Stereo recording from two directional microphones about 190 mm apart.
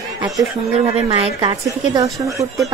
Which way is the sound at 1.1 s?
25° right (ahead or behind).